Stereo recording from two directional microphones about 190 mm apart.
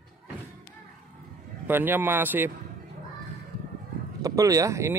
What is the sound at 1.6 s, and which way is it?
Speech, 10° right (ahead or behind).